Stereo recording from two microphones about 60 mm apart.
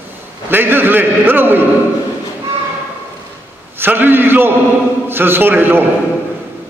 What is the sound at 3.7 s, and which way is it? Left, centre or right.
A man's voice, right.